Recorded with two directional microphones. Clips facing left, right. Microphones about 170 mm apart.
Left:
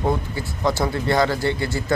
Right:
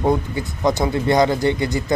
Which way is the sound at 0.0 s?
20° right (ahead or behind).